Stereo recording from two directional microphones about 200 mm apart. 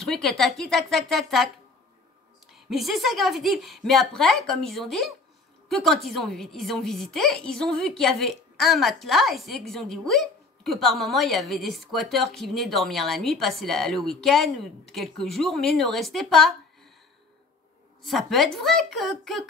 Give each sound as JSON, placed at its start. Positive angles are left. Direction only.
{"t": 0.0, "sound": "a woman's voice", "side_deg": 0}
{"t": 2.5, "sound": "a woman's voice", "side_deg": 0}
{"t": 18.0, "sound": "a woman's voice", "side_deg": 0}